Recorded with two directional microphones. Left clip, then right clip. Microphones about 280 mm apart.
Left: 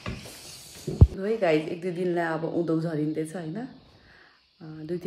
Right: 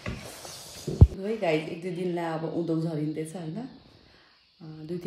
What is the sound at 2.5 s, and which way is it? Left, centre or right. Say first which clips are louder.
Speech: left 3 dB; left.